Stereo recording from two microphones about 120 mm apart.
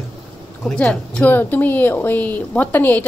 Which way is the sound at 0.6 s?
10° left (ahead or behind).